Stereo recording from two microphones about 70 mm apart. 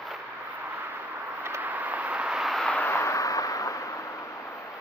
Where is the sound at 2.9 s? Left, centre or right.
Left.